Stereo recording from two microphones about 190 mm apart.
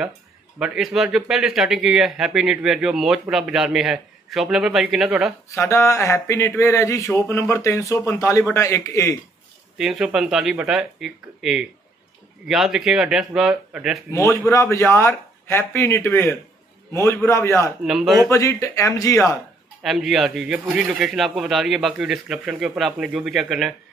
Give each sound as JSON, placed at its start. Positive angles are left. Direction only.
{"t": 0.6, "sound": "speech", "side_deg": -5}
{"t": 5.5, "sound": "speech", "side_deg": 15}
{"t": 9.8, "sound": "speech", "side_deg": -5}
{"t": 14.1, "sound": "speech", "side_deg": 15}
{"t": 17.8, "sound": "speech", "side_deg": 0}
{"t": 18.3, "sound": "speech", "side_deg": 15}
{"t": 19.8, "sound": "speech", "side_deg": 0}